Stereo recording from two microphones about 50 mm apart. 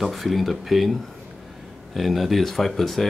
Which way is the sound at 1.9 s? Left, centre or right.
Centre.